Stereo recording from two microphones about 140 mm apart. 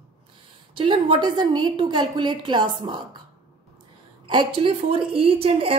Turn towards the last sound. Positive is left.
turn(degrees=-40)  # may be behind; listen again after turning